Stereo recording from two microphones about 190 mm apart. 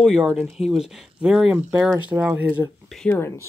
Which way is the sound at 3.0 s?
10° left (ahead or behind).